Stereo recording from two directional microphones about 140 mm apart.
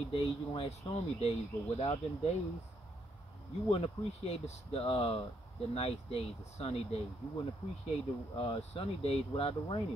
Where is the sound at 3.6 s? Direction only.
45° left (ahead or behind).